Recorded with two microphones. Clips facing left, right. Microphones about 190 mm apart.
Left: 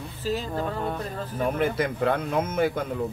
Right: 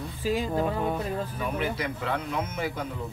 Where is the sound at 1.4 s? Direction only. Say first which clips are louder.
Left 10 dB; 50° left (ahead or behind).